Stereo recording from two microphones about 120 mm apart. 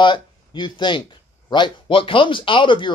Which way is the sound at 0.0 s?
40° left (ahead or behind).